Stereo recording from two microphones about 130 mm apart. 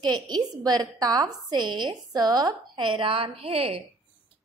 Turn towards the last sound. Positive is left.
turn(degrees=-50)  # may be behind; listen again after turning